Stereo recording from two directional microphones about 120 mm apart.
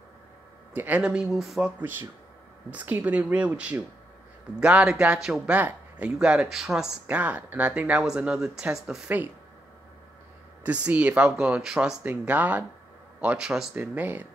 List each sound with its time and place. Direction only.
0.7 s speech: 10° right (ahead or behind)
1.8 s speech: 15° right (ahead or behind)
10.6 s speech: 10° right (ahead or behind)